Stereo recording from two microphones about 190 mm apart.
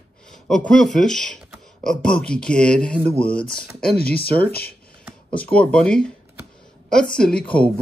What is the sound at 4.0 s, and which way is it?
Speech, 55° left (ahead or behind).